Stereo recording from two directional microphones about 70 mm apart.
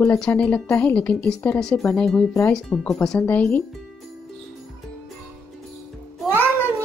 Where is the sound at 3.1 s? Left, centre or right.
Left.